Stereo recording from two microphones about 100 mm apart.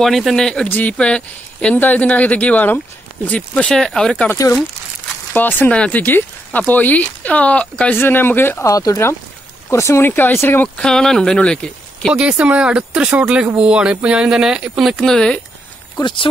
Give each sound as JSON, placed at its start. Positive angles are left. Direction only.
{"t": 0.0, "sound": "speech", "side_deg": 0}
{"t": 0.7, "sound": "speech", "side_deg": 15}
{"t": 5.3, "sound": "speech", "side_deg": 20}
{"t": 8.6, "sound": "speech", "side_deg": 35}
{"t": 10.8, "sound": "speech", "side_deg": 5}
{"t": 12.1, "sound": "speech", "side_deg": -10}
{"t": 16.0, "sound": "speech", "side_deg": 55}